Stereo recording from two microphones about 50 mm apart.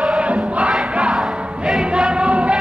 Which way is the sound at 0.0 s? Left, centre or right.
Right.